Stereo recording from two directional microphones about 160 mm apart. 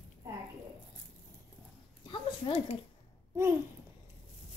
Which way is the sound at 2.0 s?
30° left (ahead or behind).